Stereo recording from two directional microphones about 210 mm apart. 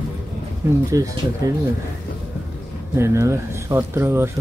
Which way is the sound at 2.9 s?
10° right (ahead or behind).